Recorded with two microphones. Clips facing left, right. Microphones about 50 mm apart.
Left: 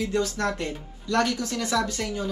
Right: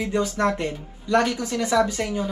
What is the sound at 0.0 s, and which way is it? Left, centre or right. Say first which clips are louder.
Speech: right 3 dB; centre.